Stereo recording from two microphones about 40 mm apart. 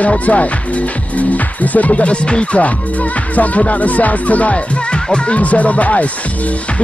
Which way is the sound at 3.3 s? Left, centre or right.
Left.